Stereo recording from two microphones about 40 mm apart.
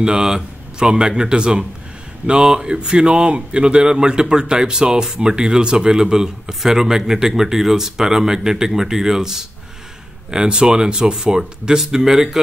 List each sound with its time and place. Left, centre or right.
0.0 s speech: centre